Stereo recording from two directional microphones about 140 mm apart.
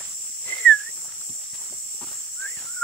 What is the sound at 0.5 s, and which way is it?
Dog, 10° left (ahead or behind).